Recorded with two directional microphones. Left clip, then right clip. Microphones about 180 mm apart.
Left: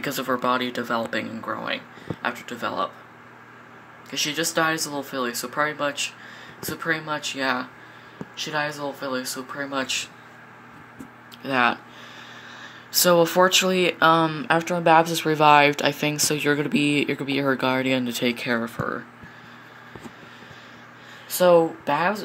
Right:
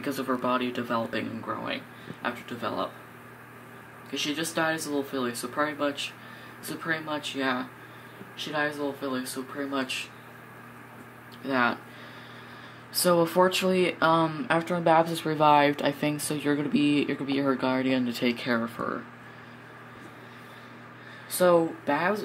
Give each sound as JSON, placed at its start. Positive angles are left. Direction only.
{"t": 0.0, "sound": "speech", "side_deg": 10}
{"t": 4.1, "sound": "speech", "side_deg": 10}
{"t": 11.4, "sound": "speech", "side_deg": 10}
{"t": 13.0, "sound": "speech", "side_deg": 10}
{"t": 21.4, "sound": "speech", "side_deg": 10}